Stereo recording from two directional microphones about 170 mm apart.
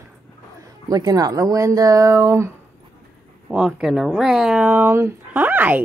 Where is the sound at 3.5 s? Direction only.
5° right (ahead or behind).